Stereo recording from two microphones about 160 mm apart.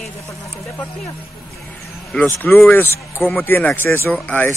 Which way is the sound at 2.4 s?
10° left (ahead or behind).